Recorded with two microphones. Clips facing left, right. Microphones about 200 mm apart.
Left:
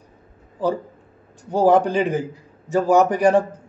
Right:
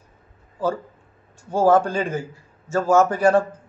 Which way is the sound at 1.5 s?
20° left (ahead or behind).